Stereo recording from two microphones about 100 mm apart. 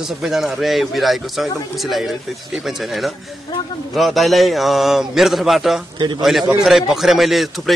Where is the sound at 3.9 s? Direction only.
Centre (ahead or behind).